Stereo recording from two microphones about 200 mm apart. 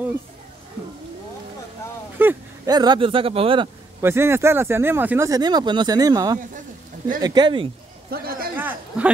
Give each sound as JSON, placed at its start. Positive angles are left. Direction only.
{"t": 2.1, "sound": "speech", "side_deg": -15}
{"t": 4.0, "sound": "speech", "side_deg": -10}
{"t": 8.1, "sound": "a sound", "side_deg": -50}
{"t": 8.5, "sound": "chatter", "side_deg": -10}